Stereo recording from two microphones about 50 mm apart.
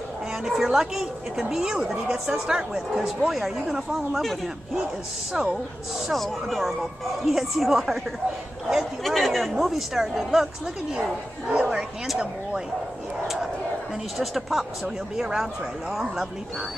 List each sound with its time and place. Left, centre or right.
0.5 s a woman's voice: centre
5.3 s a woman's voice: centre
6.0 s a woman's voice: centre
14.1 s a woman's voice: centre